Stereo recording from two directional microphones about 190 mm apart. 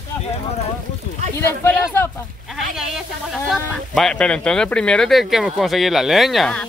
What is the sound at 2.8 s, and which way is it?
Speech, centre (ahead or behind).